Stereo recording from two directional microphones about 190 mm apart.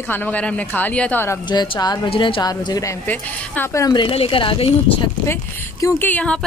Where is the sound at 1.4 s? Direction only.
25° left (ahead or behind).